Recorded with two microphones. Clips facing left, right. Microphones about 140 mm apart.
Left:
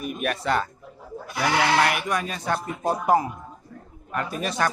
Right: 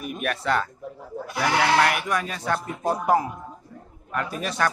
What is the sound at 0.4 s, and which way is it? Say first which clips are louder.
Speech: right 1 dB; 15° left (ahead or behind).